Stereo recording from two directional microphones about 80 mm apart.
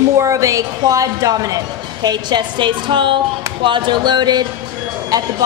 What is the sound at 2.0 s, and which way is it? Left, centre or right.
A woman's voice, right.